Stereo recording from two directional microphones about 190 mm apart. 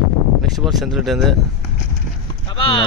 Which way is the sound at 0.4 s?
Centre (ahead or behind).